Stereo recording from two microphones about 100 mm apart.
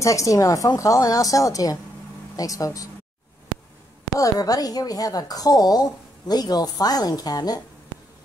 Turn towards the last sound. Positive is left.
turn(degrees=40)  # may be behind; listen again after turning